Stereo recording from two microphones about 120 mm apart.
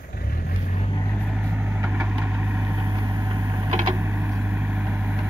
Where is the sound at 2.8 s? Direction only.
30° right (ahead or behind).